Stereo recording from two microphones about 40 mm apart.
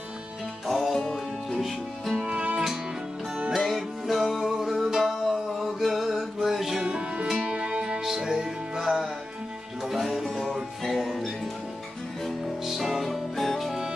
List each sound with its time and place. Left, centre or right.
0.7 s music: centre
3.5 s music: centre
6.8 s music: right
8.0 s music: centre
9.8 s music: centre
10.2 s music: centre
10.8 s music: centre
12.6 s music: centre